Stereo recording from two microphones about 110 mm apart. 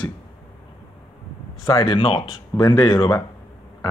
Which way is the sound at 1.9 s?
50° left (ahead or behind).